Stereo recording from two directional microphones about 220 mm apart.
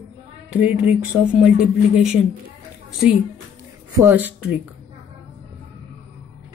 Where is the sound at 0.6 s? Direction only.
5° right (ahead or behind).